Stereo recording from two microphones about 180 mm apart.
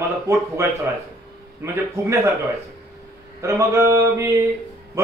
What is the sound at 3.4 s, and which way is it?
Speech, 15° right (ahead or behind).